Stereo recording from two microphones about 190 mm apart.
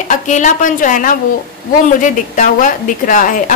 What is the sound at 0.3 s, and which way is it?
A woman's voice, 40° left (ahead or behind).